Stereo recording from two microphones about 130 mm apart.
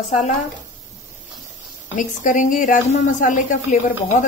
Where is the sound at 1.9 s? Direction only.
90° left.